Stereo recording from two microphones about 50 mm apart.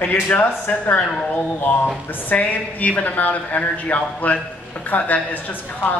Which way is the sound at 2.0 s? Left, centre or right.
Left.